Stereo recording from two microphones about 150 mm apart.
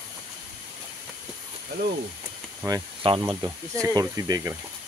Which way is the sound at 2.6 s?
20° right (ahead or behind).